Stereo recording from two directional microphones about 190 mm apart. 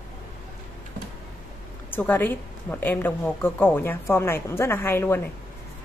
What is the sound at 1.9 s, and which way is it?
A woman's voice, 10° left (ahead or behind).